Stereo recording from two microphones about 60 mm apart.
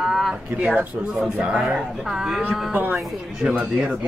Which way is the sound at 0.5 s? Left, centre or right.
Right.